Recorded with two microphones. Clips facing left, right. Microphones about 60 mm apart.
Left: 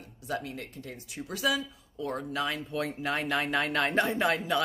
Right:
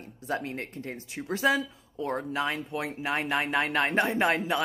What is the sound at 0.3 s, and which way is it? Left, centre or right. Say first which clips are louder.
Speech: right 3 dB; right.